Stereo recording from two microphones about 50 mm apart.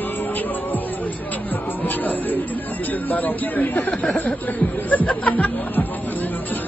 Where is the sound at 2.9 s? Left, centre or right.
Left.